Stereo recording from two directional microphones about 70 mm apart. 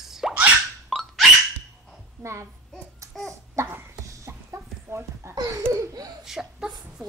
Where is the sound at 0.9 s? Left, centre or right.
Centre.